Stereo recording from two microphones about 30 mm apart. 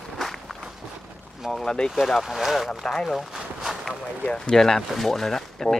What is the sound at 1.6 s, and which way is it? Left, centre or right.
Speech, left.